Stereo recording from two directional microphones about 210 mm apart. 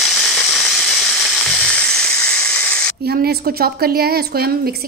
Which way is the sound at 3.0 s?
50° right (ahead or behind).